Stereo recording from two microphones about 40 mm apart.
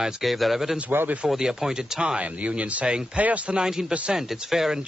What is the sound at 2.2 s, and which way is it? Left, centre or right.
Speech, right.